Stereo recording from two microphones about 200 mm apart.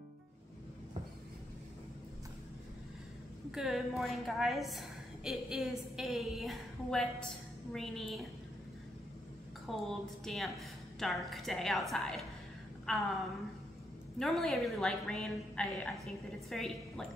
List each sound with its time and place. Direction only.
3.5 s a woman's voice: centre (ahead or behind)
9.7 s a woman's voice: centre (ahead or behind)
14.1 s a woman's voice: centre (ahead or behind)